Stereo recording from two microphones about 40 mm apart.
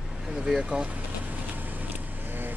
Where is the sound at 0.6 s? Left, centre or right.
Right.